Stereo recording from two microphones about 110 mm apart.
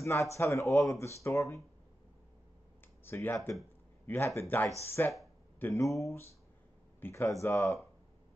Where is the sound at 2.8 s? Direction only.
20° left (ahead or behind).